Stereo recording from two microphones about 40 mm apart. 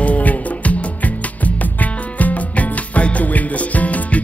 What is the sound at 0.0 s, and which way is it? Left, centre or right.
Music, left.